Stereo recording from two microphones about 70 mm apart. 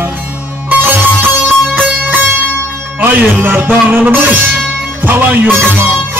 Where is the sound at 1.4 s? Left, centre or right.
Right.